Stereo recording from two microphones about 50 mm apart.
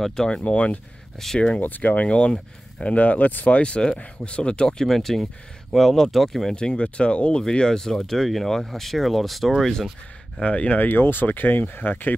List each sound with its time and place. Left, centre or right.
0.0 s speech: centre
0.4 s speech: left
1.2 s speech: centre
1.6 s speech: left; by 6.5 s centre
6.5 s speech: centre
10.4 s speech: left